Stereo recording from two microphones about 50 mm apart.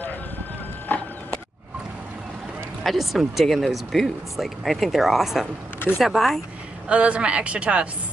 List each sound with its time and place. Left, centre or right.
0.9 s a sound: left
2.8 s speech: centre
6.9 s speech: right